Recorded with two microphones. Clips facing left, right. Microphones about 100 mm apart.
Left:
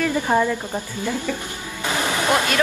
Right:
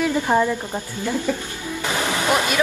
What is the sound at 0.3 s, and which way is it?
Speech, 15° right (ahead or behind).